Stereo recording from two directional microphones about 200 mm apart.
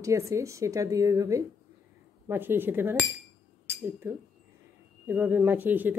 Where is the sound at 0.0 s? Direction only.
15° right (ahead or behind).